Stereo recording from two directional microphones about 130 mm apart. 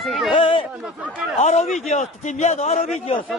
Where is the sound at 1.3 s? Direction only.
60° left (ahead or behind).